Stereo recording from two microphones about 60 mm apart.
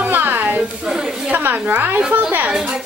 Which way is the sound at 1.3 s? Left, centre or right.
Right.